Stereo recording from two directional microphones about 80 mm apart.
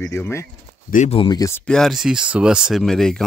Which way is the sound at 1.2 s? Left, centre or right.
Left.